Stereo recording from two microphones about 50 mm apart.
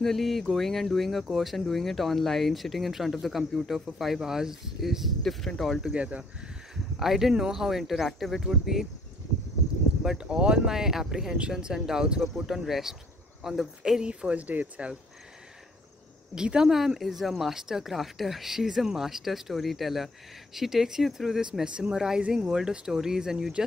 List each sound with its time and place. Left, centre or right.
0.0 s speech: centre
5.2 s speech: centre
5.9 s speech: right
7.0 s speech: centre
10.1 s speech: centre
10.7 s speech: centre
14.0 s speech: right
16.3 s speech: centre
21.6 s speech: centre